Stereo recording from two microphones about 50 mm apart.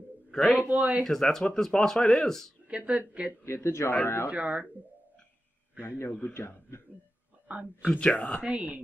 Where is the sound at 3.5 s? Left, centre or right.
Left.